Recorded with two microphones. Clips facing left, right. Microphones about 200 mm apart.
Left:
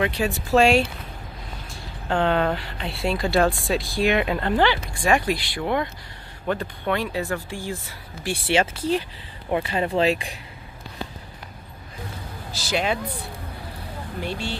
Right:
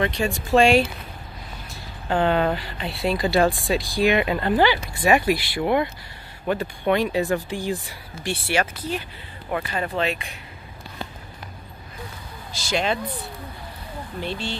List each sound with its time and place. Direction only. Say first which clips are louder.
0.0 s speech: even; 5° left (ahead or behind); by 7.9 s 15° right (ahead or behind)
8.5 s speech: left 4 dB; 25° left (ahead or behind)
12.5 s speech: even; 5° left (ahead or behind)
14.2 s speech: even; 10° left (ahead or behind)